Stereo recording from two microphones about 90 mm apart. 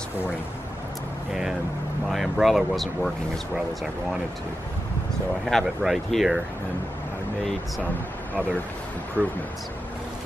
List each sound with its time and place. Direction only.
2.0 s speech: centre (ahead or behind)
5.4 s speech: centre (ahead or behind)
9.2 s speech: 15° right (ahead or behind)